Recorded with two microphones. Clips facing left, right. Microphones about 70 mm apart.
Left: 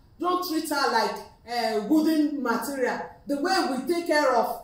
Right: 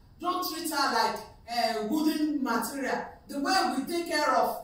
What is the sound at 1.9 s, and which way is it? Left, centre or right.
Speech, left.